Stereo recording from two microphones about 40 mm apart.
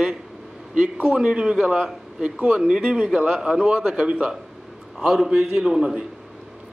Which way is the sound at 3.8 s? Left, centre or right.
Right.